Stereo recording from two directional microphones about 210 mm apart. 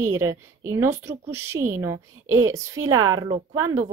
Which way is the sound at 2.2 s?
90° right.